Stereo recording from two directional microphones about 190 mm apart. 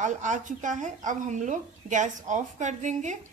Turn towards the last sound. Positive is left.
turn(degrees=-40)  # may be behind; listen again after turning